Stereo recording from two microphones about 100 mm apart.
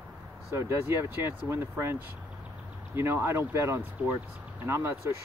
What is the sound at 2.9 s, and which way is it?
Speech, 25° right (ahead or behind).